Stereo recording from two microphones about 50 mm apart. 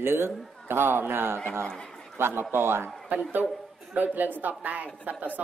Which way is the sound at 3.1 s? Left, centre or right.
Right.